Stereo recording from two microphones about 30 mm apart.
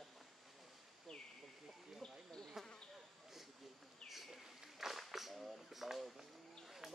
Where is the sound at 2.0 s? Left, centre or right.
Left.